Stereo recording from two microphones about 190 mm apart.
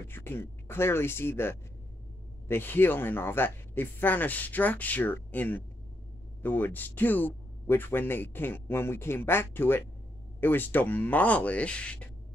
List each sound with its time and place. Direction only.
0.1 s speech: 10° left (ahead or behind)